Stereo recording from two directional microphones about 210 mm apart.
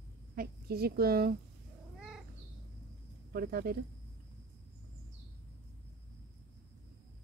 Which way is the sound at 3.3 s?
45° right (ahead or behind).